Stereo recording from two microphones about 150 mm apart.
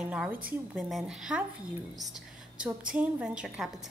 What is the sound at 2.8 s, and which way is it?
A woman's voice, 5° right (ahead or behind).